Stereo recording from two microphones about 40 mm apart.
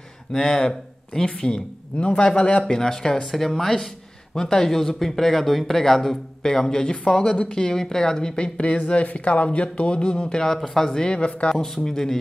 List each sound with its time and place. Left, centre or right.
0.3 s a man's voice: centre
2.6 s a man's voice: centre
11.1 s a man's voice: left
11.4 s a man's voice: centre